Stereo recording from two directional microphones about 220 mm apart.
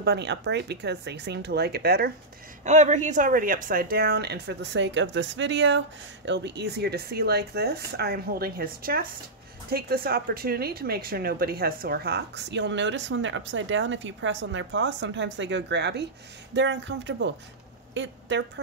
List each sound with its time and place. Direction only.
0.0 s speech: 50° right (ahead or behind)
2.6 s speech: 35° right (ahead or behind); by 16.1 s 50° right (ahead or behind)
16.5 s a sound: 55° right (ahead or behind)
17.9 s speech: 55° right (ahead or behind)